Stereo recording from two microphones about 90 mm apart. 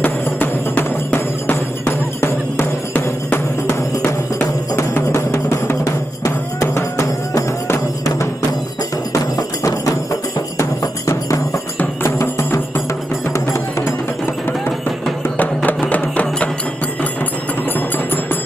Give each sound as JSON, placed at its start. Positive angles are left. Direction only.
{"t": 0.0, "sound": "music", "side_deg": 20}
{"t": 4.7, "sound": "music", "side_deg": 30}
{"t": 10.6, "sound": "music", "side_deg": 35}
{"t": 15.2, "sound": "music", "side_deg": 20}
{"t": 17.7, "sound": "music", "side_deg": 20}